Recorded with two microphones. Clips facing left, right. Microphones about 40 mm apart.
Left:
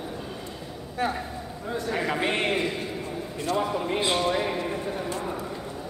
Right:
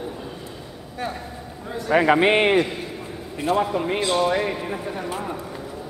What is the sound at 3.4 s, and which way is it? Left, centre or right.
A man's voice, right.